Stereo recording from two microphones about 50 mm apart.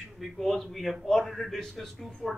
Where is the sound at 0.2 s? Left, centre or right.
Centre.